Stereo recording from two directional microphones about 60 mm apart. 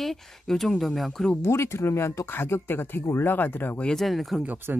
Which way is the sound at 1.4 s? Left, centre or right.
Left.